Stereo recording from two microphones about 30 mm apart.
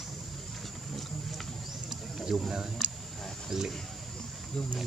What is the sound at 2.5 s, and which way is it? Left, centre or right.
Speech, centre.